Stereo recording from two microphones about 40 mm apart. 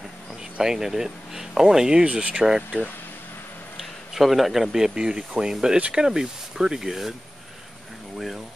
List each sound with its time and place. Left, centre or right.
0.4 s speech: centre
2.0 s speech: right
2.4 s speech: centre